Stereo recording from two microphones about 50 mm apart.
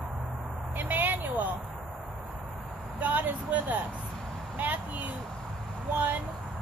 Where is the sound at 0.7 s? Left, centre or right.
Right.